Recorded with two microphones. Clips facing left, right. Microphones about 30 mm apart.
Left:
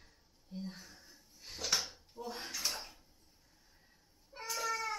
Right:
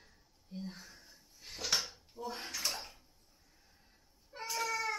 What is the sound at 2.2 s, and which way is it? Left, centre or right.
Bathtub, centre.